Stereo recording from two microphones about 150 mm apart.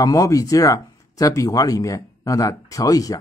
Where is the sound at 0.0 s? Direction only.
20° left (ahead or behind).